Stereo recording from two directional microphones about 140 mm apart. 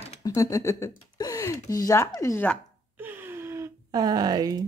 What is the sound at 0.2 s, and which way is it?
Speech, 25° left (ahead or behind).